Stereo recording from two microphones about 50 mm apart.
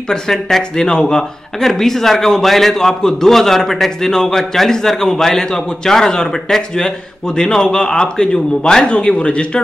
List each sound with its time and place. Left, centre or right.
0.1 s speech: centre